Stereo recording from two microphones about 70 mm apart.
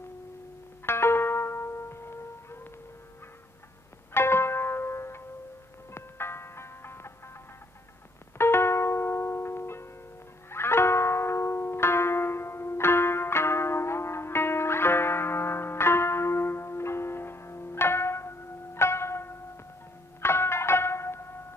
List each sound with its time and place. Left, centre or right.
0.8 s music: left
4.1 s zither: left
5.9 s ice cream truck: left
8.4 s music: left